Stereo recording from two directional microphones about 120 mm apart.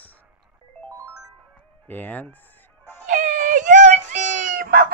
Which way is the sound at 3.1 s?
90° right.